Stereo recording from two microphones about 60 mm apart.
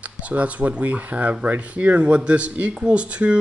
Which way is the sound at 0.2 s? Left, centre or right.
Right.